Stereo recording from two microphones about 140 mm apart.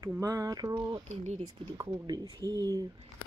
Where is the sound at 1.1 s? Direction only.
50° right (ahead or behind).